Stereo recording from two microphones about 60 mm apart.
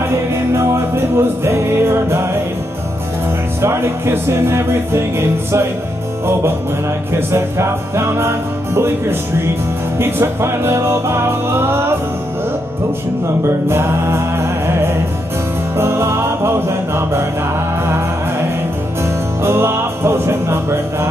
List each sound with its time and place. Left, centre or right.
0.1 s music: right
3.6 s music: right
7.2 s music: right
9.9 s music: right
13.4 s music: right
19.4 s music: right